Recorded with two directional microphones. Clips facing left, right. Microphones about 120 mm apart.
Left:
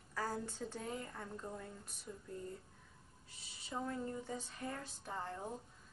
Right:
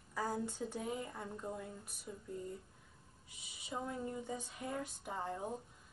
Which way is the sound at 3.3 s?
15° right (ahead or behind).